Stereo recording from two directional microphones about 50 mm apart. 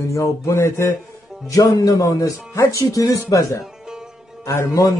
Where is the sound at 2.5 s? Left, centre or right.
Left.